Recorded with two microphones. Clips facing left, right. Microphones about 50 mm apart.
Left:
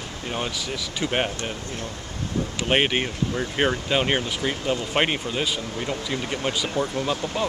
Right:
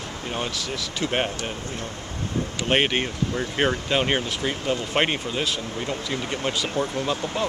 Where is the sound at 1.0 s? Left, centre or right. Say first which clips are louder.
Even; centre.